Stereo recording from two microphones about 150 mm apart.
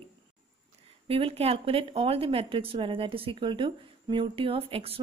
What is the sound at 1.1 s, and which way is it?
Speech, 40° right (ahead or behind).